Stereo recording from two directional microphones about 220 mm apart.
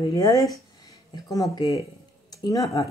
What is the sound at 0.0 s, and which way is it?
Speech, 15° left (ahead or behind).